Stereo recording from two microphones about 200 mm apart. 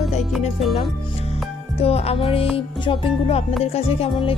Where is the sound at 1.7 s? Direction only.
30° left (ahead or behind).